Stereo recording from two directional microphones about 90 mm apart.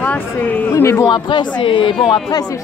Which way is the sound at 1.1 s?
65° left (ahead or behind).